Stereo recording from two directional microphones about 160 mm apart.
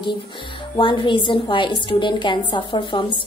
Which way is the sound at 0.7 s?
30° left (ahead or behind).